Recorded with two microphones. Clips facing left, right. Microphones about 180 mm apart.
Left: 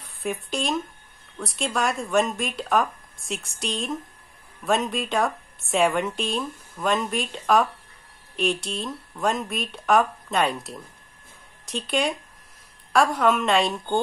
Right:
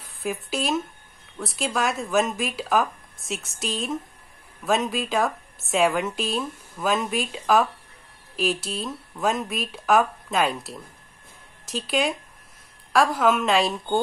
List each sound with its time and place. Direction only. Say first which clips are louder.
0.2 s a woman's voice: even; 5° right (ahead or behind)